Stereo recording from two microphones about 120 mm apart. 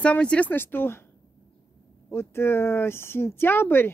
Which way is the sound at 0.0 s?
10° left (ahead or behind).